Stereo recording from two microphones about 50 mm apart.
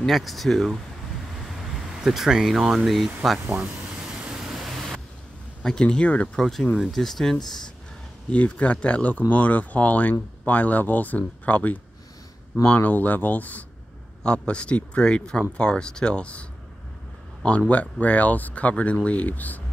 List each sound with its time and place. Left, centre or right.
0.0 s speech: centre
2.0 s speech: centre
3.2 s speech: centre
4.2 s vehicle: centre
5.6 s speech: centre
6.0 s speech: left
6.3 s speech: centre
8.3 s speech: left
14.2 s speech: centre